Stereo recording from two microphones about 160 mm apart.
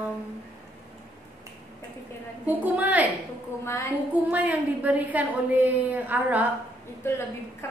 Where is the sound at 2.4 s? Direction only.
10° right (ahead or behind).